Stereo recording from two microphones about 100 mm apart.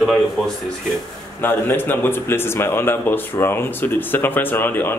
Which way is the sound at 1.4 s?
20° left (ahead or behind).